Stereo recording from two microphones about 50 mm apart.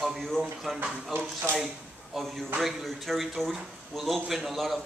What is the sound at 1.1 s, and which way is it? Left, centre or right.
Speech, right.